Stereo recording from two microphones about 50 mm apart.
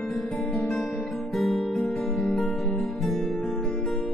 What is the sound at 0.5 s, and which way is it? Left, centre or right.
Guitar, centre.